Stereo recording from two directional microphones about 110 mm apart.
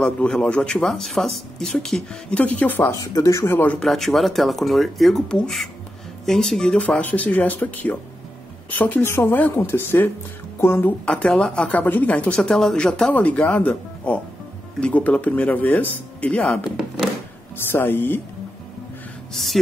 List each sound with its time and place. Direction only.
0.0 s a woman's voice: 10° left (ahead or behind)
3.0 s speech: 30° left (ahead or behind)
3.8 s a woman's voice: centre (ahead or behind); by 11.0 s 20° left (ahead or behind)
11.1 s a woman's voice: 10° left (ahead or behind)
17.6 s speech: 20° left (ahead or behind)
19.3 s speech: centre (ahead or behind)